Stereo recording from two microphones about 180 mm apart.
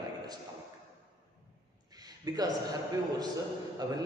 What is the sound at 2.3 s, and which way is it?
Speech, 20° right (ahead or behind).